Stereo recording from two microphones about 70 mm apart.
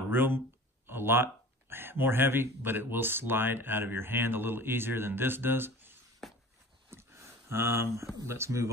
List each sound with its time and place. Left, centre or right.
0.1 s speech: right
6.9 s a sound: right
8.3 s speech: right